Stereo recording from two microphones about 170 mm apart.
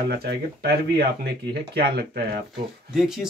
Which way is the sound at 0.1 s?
70° right (ahead or behind).